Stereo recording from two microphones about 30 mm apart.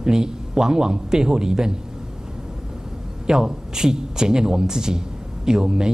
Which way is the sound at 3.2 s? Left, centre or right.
Right.